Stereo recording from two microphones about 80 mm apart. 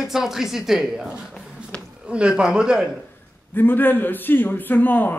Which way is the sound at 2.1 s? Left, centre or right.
Centre.